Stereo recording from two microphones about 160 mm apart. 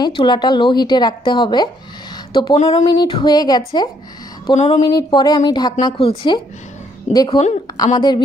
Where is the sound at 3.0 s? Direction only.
30° left (ahead or behind).